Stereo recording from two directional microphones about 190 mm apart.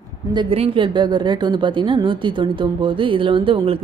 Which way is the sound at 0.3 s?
25° right (ahead or behind).